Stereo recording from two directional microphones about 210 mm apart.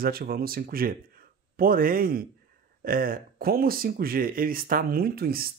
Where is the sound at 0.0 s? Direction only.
45° right (ahead or behind).